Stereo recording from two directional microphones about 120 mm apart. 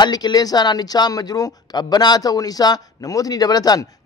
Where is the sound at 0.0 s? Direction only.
35° left (ahead or behind).